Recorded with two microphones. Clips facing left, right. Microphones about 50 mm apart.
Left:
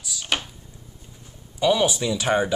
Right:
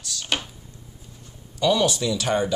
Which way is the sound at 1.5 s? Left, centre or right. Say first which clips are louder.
Left 1 dB; centre.